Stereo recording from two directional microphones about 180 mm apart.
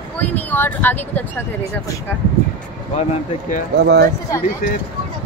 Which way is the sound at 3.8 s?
65° right (ahead or behind).